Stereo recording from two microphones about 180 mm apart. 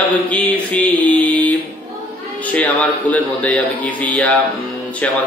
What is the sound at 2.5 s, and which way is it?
A man's voice, 10° left (ahead or behind).